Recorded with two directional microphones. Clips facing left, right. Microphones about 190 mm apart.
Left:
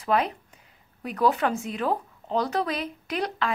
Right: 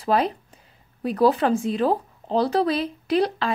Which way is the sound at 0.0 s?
35° right (ahead or behind).